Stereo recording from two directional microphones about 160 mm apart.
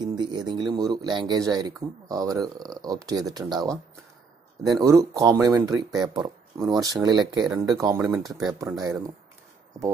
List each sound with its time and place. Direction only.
0.0 s speech: 25° right (ahead or behind)